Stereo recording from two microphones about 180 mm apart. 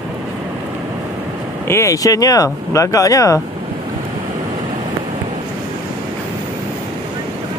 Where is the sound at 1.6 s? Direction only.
15° left (ahead or behind).